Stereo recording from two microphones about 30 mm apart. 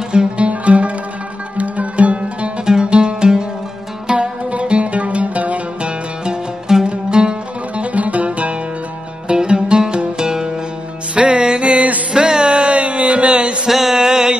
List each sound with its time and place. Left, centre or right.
0.4 s music: right
2.6 s music: right
4.1 s music: right
5.8 s music: right
7.8 s music: right
9.4 s music: right
11.1 s music: right
11.6 s a sound: right
13.7 s mantra: centre
13.9 s mantra: right